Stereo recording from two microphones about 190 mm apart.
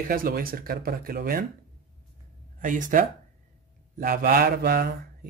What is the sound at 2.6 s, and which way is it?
Speech, 40° right (ahead or behind).